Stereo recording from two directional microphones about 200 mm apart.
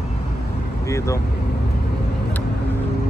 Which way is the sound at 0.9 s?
15° left (ahead or behind).